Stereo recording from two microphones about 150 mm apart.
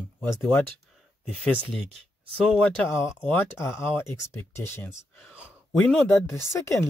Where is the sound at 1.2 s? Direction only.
Centre (ahead or behind).